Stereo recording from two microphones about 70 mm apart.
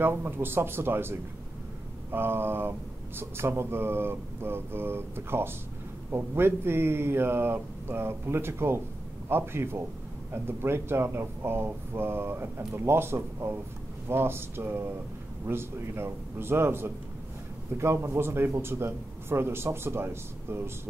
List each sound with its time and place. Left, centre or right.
0.0 s speech: right